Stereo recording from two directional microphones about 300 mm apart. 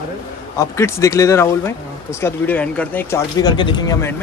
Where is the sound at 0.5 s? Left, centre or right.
Centre.